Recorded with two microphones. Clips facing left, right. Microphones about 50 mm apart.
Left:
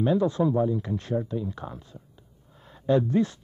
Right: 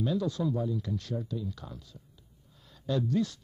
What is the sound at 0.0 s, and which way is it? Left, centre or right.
Speech, left.